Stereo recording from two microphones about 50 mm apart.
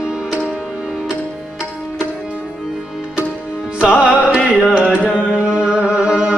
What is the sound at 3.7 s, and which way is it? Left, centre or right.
Music, right.